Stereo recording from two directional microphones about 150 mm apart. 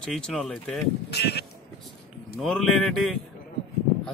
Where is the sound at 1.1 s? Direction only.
90° left.